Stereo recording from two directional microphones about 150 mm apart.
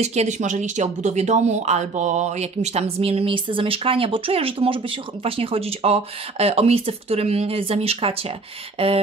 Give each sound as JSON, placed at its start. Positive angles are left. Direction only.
{"t": 0.0, "sound": "speech", "side_deg": -45}